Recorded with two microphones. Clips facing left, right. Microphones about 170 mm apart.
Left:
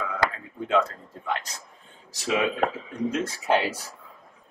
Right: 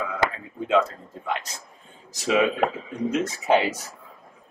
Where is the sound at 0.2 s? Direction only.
25° right (ahead or behind).